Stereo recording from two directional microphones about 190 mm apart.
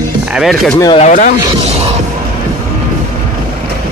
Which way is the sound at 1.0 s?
45° left (ahead or behind).